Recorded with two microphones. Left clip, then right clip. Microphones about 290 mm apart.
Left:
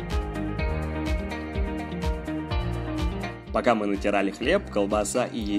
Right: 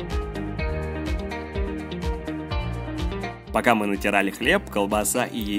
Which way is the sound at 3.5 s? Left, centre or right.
Right.